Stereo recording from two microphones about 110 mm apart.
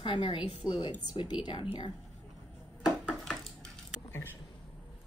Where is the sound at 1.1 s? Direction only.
45° left (ahead or behind).